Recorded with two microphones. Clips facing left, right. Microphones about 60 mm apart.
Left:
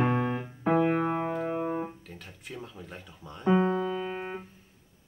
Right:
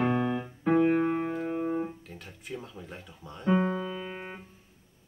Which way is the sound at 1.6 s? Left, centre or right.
Left.